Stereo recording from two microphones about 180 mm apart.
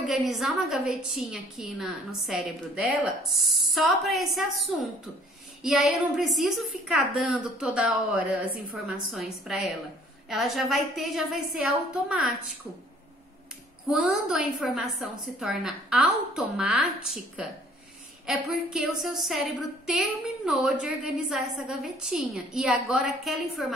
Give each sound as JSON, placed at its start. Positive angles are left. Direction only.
{"t": 0.1, "sound": "a woman's voice", "side_deg": 0}
{"t": 13.8, "sound": "a woman's voice", "side_deg": 0}
{"t": 20.4, "sound": "a woman's voice", "side_deg": 0}